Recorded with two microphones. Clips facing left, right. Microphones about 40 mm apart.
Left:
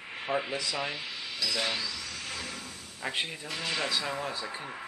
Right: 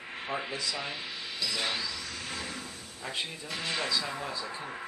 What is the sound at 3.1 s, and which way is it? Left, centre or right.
Speech, left.